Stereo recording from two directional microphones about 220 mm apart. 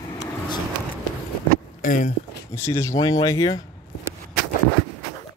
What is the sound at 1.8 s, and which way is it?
Speech, 35° left (ahead or behind).